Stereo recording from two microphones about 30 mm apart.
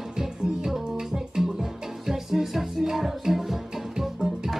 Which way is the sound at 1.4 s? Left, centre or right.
Centre.